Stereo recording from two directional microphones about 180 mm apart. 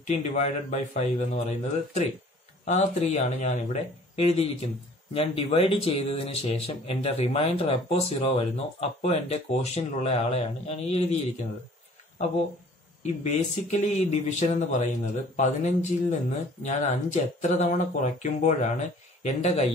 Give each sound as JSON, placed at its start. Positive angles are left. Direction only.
{"t": 0.0, "sound": "speech", "side_deg": 40}
{"t": 13.0, "sound": "speech", "side_deg": 40}